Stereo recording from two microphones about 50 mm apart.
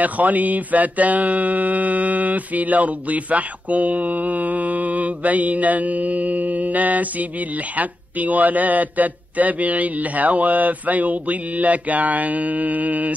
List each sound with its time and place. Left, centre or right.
0.0 s mantra: right